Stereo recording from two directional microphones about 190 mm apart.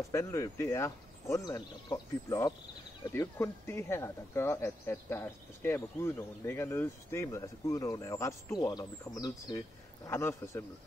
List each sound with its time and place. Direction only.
0.1 s speech: 15° left (ahead or behind)